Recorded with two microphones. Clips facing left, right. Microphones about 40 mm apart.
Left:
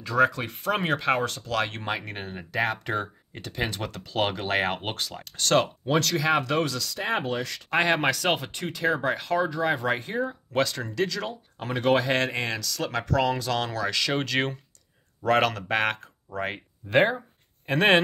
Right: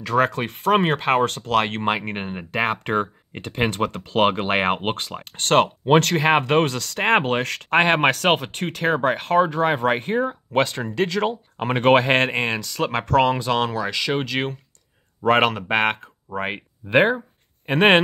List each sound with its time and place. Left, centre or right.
0.0 s speech: right
7.7 s speech: right
13.4 s speech: right
13.7 s speech: centre
15.2 s speech: right
17.6 s speech: right